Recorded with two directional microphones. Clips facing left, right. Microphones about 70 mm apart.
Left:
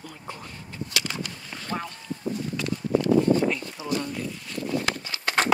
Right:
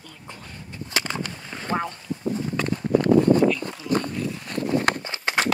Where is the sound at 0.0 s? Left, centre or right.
Centre.